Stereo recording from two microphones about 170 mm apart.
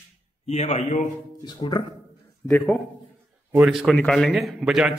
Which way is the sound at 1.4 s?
25° left (ahead or behind).